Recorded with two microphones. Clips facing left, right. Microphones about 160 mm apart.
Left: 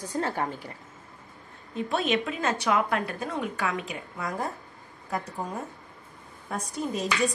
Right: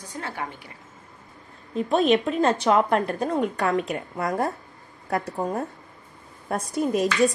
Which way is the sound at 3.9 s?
55° right (ahead or behind).